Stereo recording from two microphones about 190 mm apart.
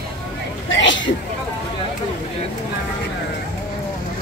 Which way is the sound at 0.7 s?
75° left (ahead or behind).